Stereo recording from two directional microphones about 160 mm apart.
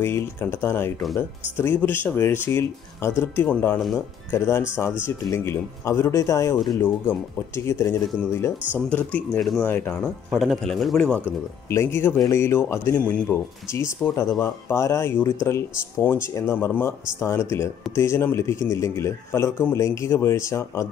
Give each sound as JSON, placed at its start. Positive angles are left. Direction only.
{"t": 0.0, "sound": "speech", "side_deg": 15}
{"t": 10.3, "sound": "a man's voice", "side_deg": 0}
{"t": 11.7, "sound": "speech", "side_deg": 15}